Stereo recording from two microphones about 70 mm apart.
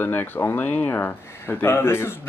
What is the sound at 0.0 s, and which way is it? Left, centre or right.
Speech, left.